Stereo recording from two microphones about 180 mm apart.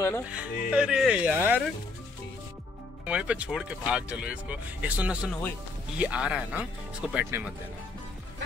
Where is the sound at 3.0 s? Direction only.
5° right (ahead or behind).